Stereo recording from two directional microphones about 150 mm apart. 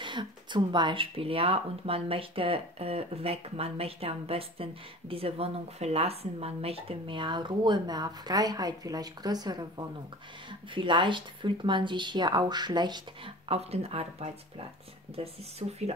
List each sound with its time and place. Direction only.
0.0 s speech: 30° right (ahead or behind)
13.5 s speech: 45° right (ahead or behind)